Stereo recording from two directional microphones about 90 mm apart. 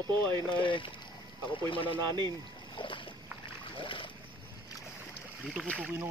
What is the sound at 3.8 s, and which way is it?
Boat, 70° left (ahead or behind).